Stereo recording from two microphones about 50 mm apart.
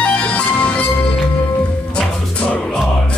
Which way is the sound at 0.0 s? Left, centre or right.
Left.